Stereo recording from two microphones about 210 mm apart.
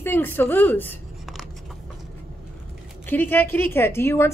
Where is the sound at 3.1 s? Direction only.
10° left (ahead or behind).